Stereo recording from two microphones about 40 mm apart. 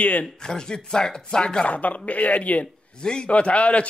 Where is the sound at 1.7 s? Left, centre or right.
Left.